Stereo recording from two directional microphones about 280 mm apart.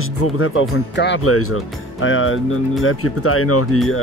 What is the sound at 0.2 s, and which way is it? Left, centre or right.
Speech, left.